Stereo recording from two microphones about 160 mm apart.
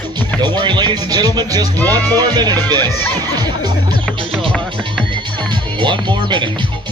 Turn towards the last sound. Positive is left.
turn(degrees=-30)  # may be behind; listen again after turning